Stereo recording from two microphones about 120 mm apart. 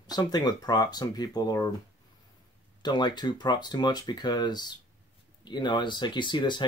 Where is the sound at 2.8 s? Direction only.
35° left (ahead or behind).